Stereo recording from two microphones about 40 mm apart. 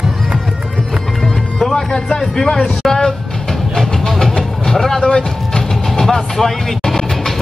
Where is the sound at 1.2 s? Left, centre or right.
Centre.